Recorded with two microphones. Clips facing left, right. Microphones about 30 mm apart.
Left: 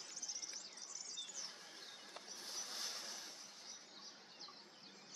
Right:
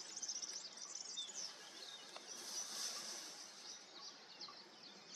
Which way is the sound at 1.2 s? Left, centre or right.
Centre.